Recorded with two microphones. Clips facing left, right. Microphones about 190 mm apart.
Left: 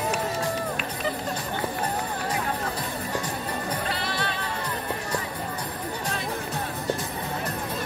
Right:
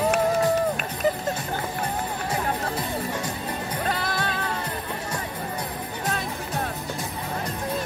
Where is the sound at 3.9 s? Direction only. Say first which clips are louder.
Right 2 dB; 45° right (ahead or behind).